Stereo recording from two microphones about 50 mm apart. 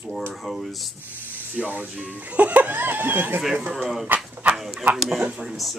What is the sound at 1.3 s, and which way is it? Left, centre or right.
Speech, right.